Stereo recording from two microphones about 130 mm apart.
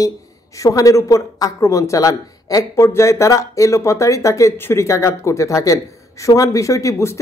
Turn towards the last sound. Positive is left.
turn(degrees=25)  # may be behind; listen again after turning